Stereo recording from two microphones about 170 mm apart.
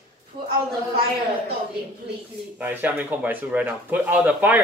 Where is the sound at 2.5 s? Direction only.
10° right (ahead or behind).